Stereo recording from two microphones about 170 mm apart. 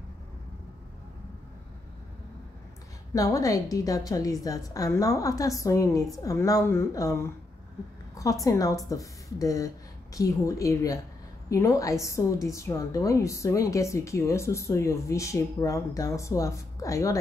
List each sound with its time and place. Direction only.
3.2 s a woman's voice: 20° left (ahead or behind)
8.1 s a sound: 20° left (ahead or behind)
8.5 s a woman's voice: 20° left (ahead or behind)